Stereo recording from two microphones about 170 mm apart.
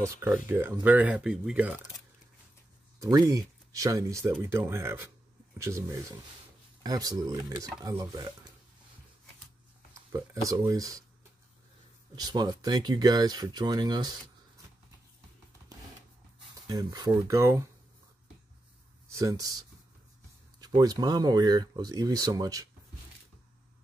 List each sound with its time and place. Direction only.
0.0 s speech: 15° right (ahead or behind)
3.0 s speech: 20° right (ahead or behind)
9.9 s speech: 20° right (ahead or behind)
12.2 s speech: 25° right (ahead or behind)
16.6 s speech: 25° right (ahead or behind)
19.1 s speech: 20° right (ahead or behind)
20.6 s speech: 25° right (ahead or behind)